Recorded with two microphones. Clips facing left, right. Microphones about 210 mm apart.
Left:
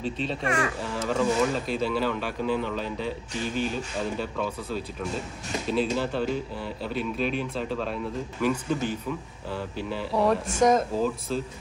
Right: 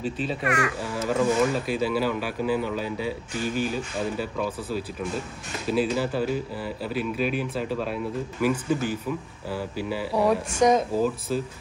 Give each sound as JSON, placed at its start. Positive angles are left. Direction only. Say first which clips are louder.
{"t": 0.0, "sound": "speech", "louder": "right 1 dB", "side_deg": -5}
{"t": 0.4, "sound": "a child's voice", "louder": "right 1 dB", "side_deg": 30}
{"t": 0.9, "sound": "speech", "louder": "right 2 dB", "side_deg": -5}